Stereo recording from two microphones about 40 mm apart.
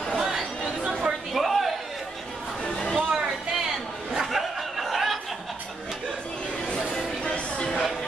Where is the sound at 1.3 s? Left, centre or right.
Centre.